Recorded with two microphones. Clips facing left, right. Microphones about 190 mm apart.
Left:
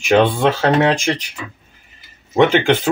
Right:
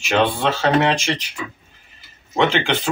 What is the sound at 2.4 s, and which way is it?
Speech, 50° left (ahead or behind).